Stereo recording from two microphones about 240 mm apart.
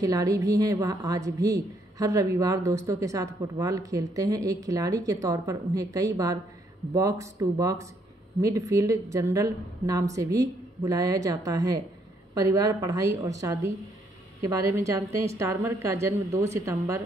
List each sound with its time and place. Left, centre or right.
0.0 s a woman's voice: centre
14.7 s a woman's voice: centre